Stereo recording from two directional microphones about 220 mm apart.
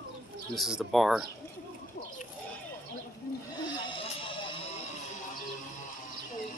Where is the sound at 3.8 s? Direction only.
25° left (ahead or behind).